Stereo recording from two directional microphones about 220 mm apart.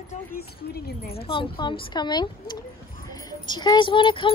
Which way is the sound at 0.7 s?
45° left (ahead or behind).